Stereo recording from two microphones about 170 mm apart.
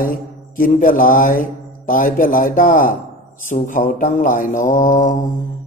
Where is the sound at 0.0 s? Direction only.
55° left (ahead or behind).